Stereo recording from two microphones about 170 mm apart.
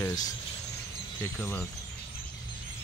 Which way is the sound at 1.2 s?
10° left (ahead or behind).